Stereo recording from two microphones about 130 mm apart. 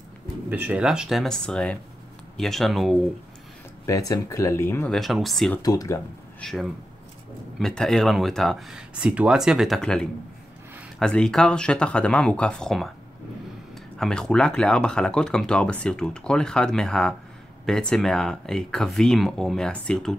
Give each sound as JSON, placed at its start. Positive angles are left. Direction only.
{"t": 0.5, "sound": "speech", "side_deg": -15}
{"t": 4.1, "sound": "speech", "side_deg": 25}
{"t": 4.8, "sound": "speech", "side_deg": 0}
{"t": 5.6, "sound": "speech", "side_deg": 25}
{"t": 6.4, "sound": "speech", "side_deg": 0}
{"t": 13.9, "sound": "speech", "side_deg": 5}